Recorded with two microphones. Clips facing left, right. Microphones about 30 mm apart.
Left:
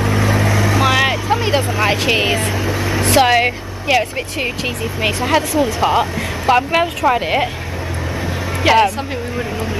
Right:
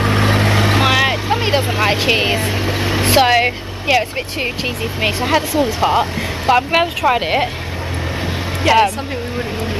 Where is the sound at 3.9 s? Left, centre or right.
Centre.